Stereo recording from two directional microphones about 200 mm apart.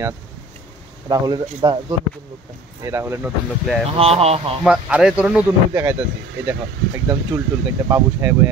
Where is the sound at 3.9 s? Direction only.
30° right (ahead or behind).